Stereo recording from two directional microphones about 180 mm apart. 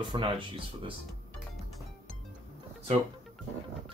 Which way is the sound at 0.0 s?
30° right (ahead or behind).